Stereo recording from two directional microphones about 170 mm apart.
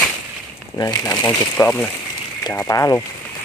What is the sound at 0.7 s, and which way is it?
Speech, 20° left (ahead or behind).